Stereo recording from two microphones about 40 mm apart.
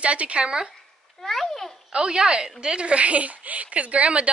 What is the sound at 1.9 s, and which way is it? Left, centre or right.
A woman's voice, right.